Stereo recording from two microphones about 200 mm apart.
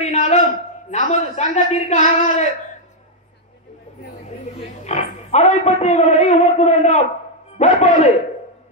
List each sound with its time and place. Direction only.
0.0 s a man's voice: 35° left (ahead or behind)
4.8 s a man's voice: 35° left (ahead or behind)